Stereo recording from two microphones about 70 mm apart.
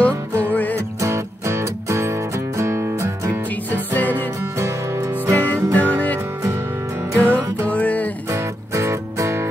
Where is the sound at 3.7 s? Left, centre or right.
Left.